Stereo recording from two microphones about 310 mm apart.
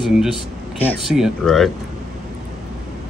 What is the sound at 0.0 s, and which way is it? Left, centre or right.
A man's voice, centre.